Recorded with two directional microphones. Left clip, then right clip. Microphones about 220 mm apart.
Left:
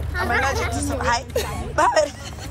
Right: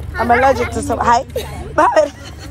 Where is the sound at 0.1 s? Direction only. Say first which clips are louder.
Right 9 dB; centre (ahead or behind).